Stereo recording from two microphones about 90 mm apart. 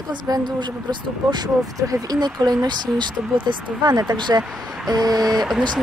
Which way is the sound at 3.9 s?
40° right (ahead or behind).